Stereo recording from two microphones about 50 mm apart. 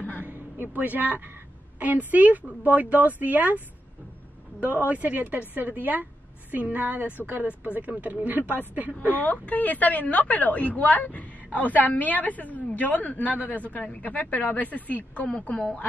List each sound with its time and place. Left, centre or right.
0.2 s a sound: right
1.8 s speech: right
4.6 s speech: right
9.2 s a woman's voice: left